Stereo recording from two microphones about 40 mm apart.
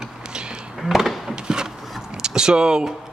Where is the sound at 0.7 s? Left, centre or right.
Centre.